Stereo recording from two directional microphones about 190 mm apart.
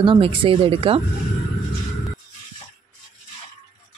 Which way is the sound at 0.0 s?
25° right (ahead or behind).